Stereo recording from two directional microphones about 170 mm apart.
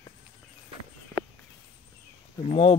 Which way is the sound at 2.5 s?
35° left (ahead or behind).